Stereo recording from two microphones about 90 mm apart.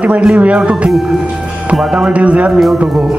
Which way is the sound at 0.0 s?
15° right (ahead or behind).